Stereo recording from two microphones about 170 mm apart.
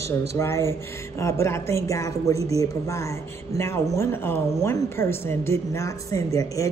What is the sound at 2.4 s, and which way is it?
Speech, 35° right (ahead or behind).